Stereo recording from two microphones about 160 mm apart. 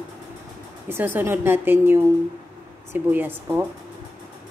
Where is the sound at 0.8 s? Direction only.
15° right (ahead or behind).